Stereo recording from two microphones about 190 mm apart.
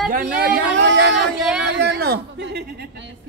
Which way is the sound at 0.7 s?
70° right (ahead or behind).